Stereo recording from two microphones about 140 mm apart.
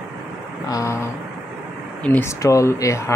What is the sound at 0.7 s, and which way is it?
Speech, 25° left (ahead or behind).